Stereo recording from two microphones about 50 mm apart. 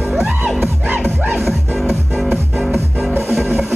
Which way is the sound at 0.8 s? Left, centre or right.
Right.